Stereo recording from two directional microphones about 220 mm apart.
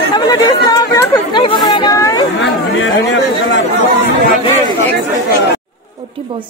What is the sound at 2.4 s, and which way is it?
Speech, 55° left (ahead or behind).